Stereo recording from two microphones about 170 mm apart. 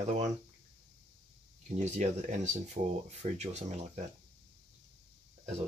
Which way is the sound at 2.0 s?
45° right (ahead or behind).